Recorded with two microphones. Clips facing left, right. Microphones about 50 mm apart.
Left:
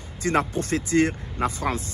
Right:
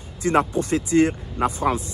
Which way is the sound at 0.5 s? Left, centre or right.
Left.